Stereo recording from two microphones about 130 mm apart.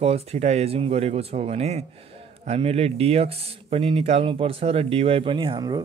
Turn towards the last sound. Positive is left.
turn(degrees=-35)  # may be behind; listen again after turning